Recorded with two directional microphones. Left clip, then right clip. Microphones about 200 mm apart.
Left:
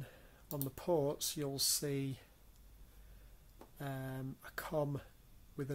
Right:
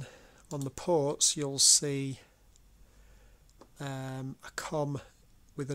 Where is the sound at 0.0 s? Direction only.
50° right (ahead or behind).